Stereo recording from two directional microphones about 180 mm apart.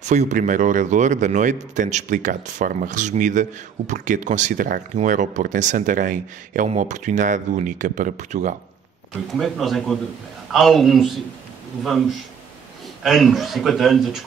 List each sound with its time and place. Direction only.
0.0 s speech: 40° right (ahead or behind)
9.4 s a man's voice: centre (ahead or behind)
13.0 s a man's voice: centre (ahead or behind)